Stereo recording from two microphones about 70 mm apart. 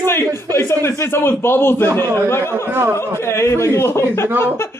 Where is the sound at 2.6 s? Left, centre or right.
Right.